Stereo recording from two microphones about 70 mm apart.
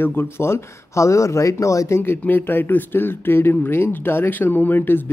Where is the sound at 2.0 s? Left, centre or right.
Left.